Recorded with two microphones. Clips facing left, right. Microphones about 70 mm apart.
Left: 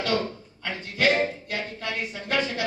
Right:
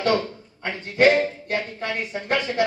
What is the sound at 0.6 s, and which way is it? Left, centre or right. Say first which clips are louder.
A man's voice: right 7 dB; right.